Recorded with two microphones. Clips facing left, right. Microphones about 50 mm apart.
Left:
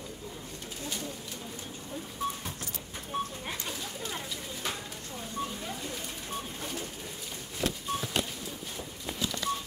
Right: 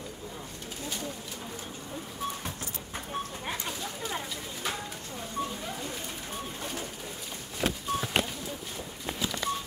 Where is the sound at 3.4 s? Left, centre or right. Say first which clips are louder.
Right 2 dB; centre.